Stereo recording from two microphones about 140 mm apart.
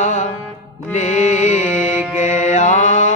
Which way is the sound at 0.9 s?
60° left (ahead or behind).